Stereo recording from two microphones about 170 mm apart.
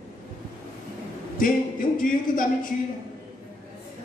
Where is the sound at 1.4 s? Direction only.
55° left (ahead or behind).